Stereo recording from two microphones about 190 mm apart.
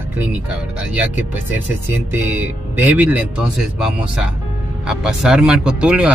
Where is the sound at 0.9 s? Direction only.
10° right (ahead or behind).